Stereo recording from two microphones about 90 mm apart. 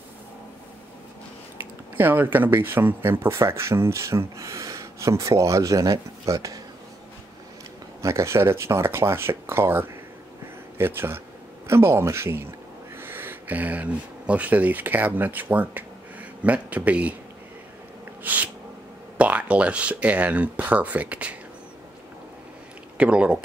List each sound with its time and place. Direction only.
1.6 s speech: 20° right (ahead or behind); by 6.6 s 40° right (ahead or behind)
8.0 s speech: 35° right (ahead or behind); by 17.1 s 15° right (ahead or behind)
18.2 s a sound: 20° right (ahead or behind)
19.1 s speech: 15° right (ahead or behind)
22.9 s speech: 10° right (ahead or behind)